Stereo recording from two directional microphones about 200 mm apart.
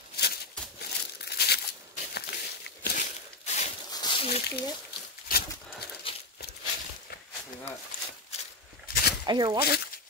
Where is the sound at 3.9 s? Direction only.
20° left (ahead or behind).